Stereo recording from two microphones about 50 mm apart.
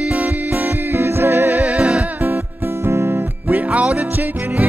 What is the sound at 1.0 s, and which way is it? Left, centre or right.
Music, right.